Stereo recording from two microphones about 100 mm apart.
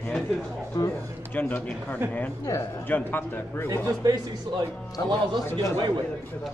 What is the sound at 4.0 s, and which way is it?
Speech, 45° right (ahead or behind).